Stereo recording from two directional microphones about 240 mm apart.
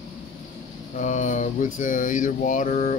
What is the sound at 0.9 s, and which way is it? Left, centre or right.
Speech, left.